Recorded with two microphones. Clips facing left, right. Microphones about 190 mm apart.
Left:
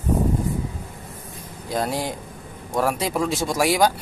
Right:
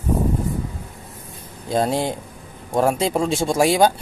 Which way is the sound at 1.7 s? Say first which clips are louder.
Right 5 dB; 25° right (ahead or behind).